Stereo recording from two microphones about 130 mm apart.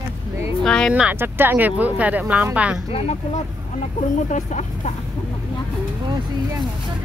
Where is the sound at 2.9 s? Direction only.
50° left (ahead or behind).